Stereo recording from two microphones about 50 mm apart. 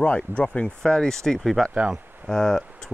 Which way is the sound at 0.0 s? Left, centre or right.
Left.